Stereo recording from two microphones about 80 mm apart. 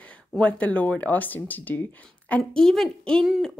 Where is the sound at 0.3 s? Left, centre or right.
Centre.